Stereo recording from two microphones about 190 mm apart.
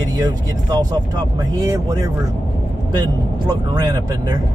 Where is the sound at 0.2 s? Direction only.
20° right (ahead or behind).